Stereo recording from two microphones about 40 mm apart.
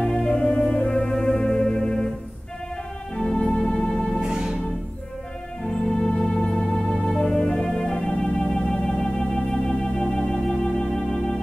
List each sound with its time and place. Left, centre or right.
0.0 s music: centre
3.2 s music: centre
4.2 s music: right
5.6 s music: centre
9.9 s keyboard: centre
10.9 s music: centre